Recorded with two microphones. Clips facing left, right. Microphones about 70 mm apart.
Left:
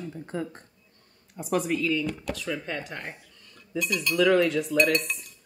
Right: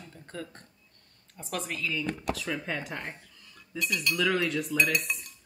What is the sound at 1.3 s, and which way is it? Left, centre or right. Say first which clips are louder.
Speech: left 9 dB; centre.